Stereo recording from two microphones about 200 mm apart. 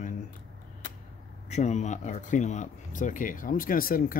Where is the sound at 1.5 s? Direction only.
35° left (ahead or behind).